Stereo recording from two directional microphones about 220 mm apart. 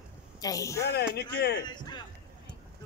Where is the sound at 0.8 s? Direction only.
45° left (ahead or behind).